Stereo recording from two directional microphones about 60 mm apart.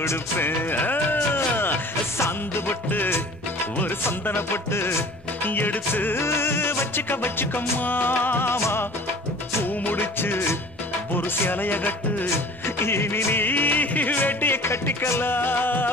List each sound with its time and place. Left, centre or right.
0.4 s music: left
2.1 s music: left
2.9 s music: left
4.4 s music: left
12.6 s music: left